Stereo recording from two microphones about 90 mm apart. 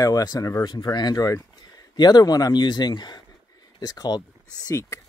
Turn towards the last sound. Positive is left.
turn(degrees=35)  # may be behind; listen again after turning